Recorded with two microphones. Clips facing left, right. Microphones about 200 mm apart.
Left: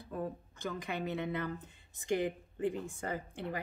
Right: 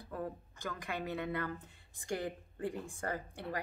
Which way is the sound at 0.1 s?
20° left (ahead or behind).